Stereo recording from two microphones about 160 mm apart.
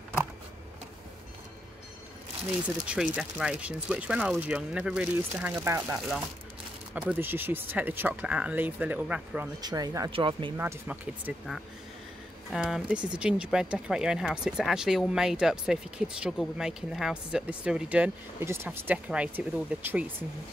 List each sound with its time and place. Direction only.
2.9 s speech: 5° right (ahead or behind)
7.0 s speech: 10° right (ahead or behind)
9.6 s speech: 25° right (ahead or behind)
10.6 s speech: 10° right (ahead or behind)
12.4 s speech: centre (ahead or behind)